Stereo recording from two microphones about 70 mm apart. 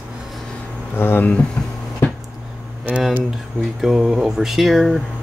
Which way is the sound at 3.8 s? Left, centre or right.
Centre.